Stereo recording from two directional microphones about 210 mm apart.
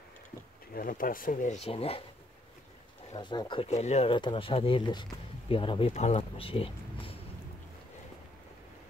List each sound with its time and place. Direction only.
0.7 s speech: 40° left (ahead or behind)
3.1 s speech: 20° left (ahead or behind)